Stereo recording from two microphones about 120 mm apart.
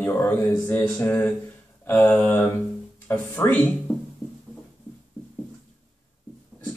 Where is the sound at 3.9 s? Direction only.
15° left (ahead or behind).